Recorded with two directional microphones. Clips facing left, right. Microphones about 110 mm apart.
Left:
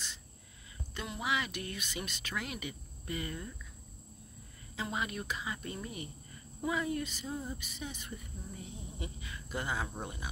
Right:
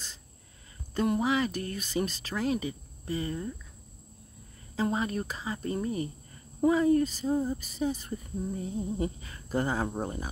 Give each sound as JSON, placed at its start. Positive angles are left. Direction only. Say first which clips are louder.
{"t": 0.9, "sound": "speech", "louder": "right 9 dB", "side_deg": -45}
{"t": 4.7, "sound": "speech", "louder": "right 8 dB", "side_deg": -35}